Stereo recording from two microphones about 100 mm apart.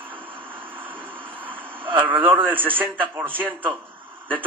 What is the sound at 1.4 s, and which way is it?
Vehicle, 20° right (ahead or behind).